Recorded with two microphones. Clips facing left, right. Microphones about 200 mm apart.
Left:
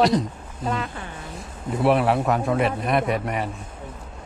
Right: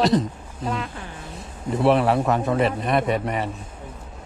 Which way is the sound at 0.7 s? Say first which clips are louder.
Left 1 dB; centre (ahead or behind).